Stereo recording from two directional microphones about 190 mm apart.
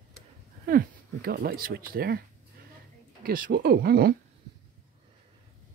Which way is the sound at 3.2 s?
50° right (ahead or behind).